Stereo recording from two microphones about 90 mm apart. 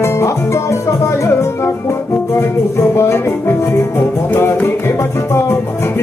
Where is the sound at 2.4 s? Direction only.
30° left (ahead or behind).